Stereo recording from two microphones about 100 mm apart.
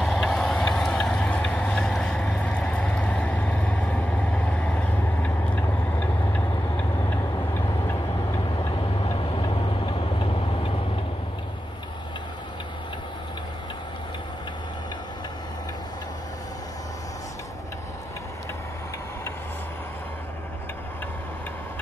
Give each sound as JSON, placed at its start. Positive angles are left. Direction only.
{"t": 0.0, "sound": "vehicle", "side_deg": 5}
{"t": 9.4, "sound": "vehicle", "side_deg": 55}